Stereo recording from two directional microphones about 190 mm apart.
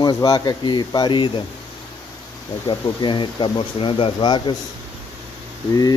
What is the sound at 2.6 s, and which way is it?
Speech, 25° left (ahead or behind).